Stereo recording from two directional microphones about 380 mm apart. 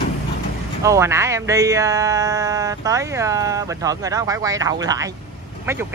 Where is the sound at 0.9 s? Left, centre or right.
Centre.